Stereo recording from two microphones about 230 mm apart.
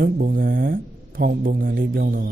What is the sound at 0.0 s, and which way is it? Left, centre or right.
A man's voice, right.